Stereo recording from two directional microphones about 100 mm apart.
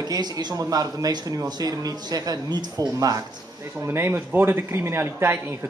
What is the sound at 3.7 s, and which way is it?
Speech, 25° right (ahead or behind).